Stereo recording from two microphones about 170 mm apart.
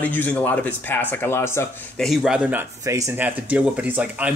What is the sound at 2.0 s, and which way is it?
Speech, centre (ahead or behind).